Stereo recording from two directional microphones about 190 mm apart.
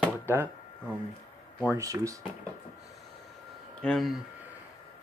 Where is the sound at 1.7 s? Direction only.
15° right (ahead or behind).